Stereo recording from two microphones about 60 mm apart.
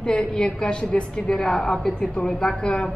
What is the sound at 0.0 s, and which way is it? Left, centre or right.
A woman's voice, centre.